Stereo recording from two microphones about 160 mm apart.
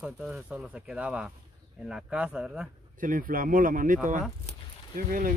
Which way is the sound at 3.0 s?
60° right (ahead or behind).